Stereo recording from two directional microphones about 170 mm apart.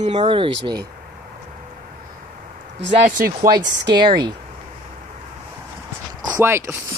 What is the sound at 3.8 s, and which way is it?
Speech, 25° right (ahead or behind).